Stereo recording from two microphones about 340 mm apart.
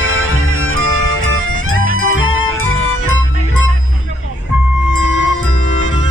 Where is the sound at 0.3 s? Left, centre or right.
Left.